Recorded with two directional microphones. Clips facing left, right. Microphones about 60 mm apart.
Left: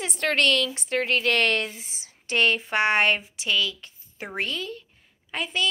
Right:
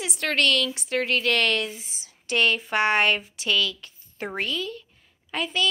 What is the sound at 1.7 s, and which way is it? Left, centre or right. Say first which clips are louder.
Speech: even; left.